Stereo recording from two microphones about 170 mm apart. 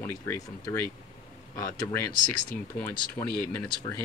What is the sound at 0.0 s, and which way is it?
Speech, 15° left (ahead or behind).